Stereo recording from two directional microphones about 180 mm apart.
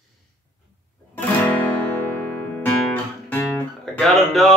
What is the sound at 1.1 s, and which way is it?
Music, 10° left (ahead or behind).